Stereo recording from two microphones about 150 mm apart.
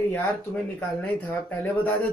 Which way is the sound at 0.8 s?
10° left (ahead or behind).